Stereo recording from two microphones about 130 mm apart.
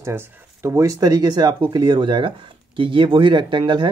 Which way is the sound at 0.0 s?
20° right (ahead or behind).